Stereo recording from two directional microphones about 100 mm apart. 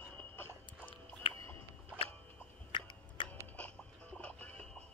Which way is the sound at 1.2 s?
65° left (ahead or behind).